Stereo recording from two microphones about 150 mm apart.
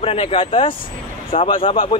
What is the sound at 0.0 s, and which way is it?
A man's voice, 40° left (ahead or behind).